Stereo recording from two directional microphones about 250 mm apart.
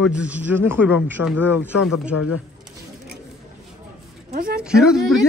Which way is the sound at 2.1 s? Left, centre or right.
Left.